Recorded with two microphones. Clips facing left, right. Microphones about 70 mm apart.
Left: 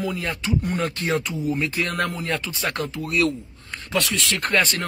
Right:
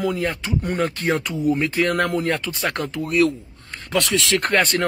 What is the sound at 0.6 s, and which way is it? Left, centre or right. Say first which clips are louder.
Speech: right 2 dB; right.